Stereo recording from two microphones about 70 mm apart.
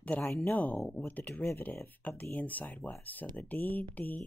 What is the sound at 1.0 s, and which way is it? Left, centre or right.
Speech, left.